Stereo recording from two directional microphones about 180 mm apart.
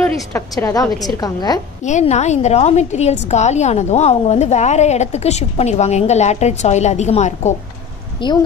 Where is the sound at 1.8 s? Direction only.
40° left (ahead or behind).